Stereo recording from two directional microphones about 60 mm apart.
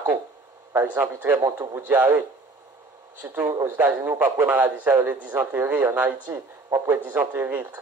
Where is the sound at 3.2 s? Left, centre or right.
Right.